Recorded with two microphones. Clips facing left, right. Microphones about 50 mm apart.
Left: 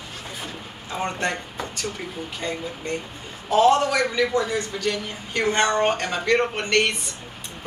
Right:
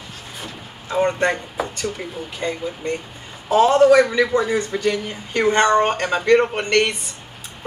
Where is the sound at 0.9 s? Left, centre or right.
Centre.